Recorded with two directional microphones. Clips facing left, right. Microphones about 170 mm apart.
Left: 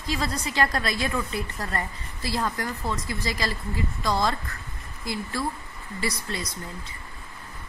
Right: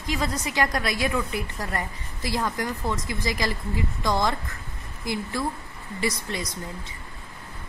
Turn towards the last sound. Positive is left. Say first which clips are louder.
# right 2 dB
turn(degrees=-20)  # may be behind; listen again after turning